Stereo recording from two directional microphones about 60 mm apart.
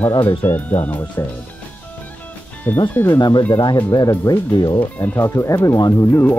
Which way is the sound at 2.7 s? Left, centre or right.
Left.